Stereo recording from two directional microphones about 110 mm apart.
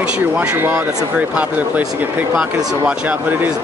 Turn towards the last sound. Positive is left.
turn(degrees=-15)  # may be behind; listen again after turning